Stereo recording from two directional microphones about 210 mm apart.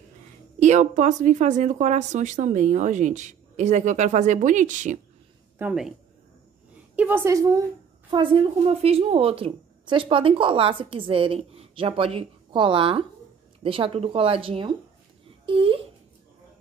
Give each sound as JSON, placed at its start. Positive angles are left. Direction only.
{"t": 0.6, "sound": "speech", "side_deg": -35}
{"t": 5.6, "sound": "speech", "side_deg": -5}
{"t": 7.0, "sound": "a woman's voice", "side_deg": -10}